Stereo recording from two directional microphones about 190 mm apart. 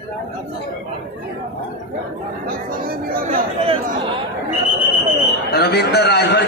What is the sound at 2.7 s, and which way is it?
Music, 50° right (ahead or behind).